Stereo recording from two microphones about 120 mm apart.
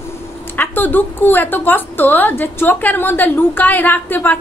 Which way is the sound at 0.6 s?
15° left (ahead or behind).